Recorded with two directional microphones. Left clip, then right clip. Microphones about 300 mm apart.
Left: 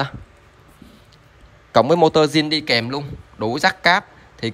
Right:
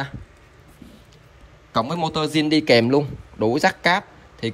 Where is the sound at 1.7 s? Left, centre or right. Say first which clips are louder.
Left 9 dB; centre.